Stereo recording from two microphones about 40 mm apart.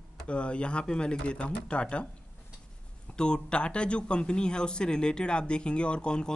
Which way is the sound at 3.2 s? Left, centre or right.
Left.